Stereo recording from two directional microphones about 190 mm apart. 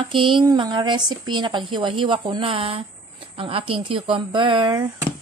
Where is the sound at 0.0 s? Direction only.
25° right (ahead or behind).